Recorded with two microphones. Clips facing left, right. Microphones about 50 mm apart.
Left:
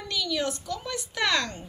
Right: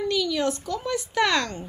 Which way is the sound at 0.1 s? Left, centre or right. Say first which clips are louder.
Even; right.